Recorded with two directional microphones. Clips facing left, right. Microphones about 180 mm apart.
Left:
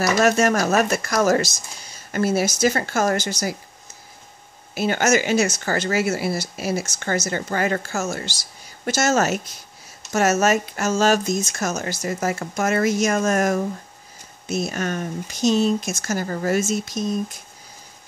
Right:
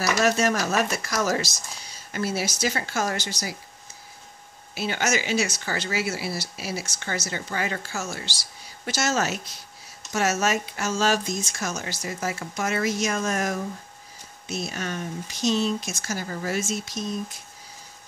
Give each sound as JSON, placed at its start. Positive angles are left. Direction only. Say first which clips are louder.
{"t": 0.2, "sound": "speech", "louder": "left 4 dB", "side_deg": 50}
{"t": 4.7, "sound": "speech", "louder": "left 7 dB", "side_deg": 50}